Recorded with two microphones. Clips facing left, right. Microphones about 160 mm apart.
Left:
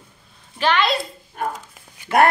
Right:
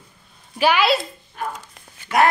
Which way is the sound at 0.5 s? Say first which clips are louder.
Right 2 dB; 10° right (ahead or behind).